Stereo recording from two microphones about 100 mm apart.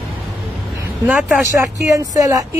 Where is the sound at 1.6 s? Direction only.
30° right (ahead or behind).